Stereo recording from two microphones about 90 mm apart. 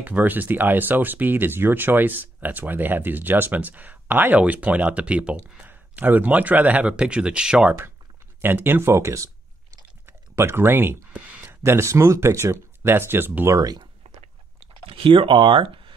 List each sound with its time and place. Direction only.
0.0 s speech: 20° right (ahead or behind)
8.4 s speech: 25° right (ahead or behind)
13.5 s speech: 45° right (ahead or behind)
14.9 s speech: 90° right